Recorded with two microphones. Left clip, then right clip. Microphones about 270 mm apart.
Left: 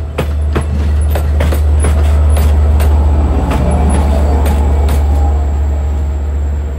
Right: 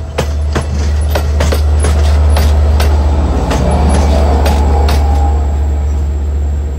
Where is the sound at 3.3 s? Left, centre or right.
Right.